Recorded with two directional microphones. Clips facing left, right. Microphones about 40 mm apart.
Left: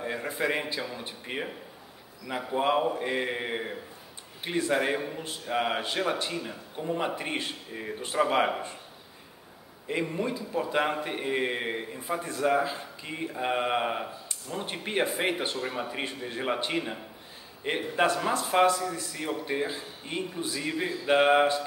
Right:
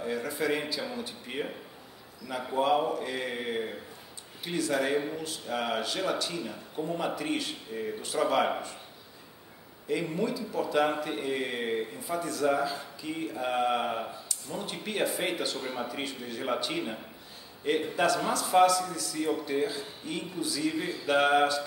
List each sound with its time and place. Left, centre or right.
0.0 s speech: left
9.8 s speech: left